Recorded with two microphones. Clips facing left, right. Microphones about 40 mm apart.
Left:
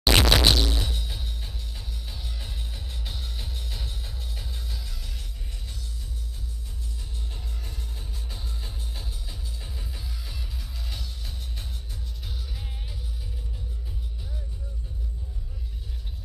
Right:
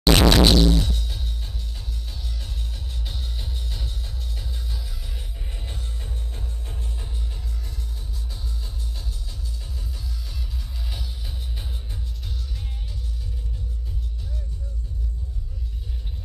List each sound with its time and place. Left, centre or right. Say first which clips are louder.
0.0 s music: right 4 dB; centre
8.3 s music: right 1 dB; left
9.3 s music: right 1 dB; centre
10.9 s music: right 2 dB; centre